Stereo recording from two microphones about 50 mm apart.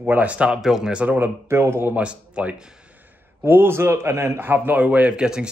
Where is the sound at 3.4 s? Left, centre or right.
Right.